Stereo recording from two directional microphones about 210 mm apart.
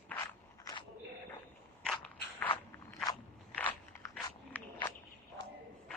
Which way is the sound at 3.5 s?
5° left (ahead or behind).